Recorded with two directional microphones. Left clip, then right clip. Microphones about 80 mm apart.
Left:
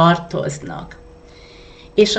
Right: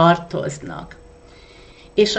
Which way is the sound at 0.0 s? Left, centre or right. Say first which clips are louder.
Even; right.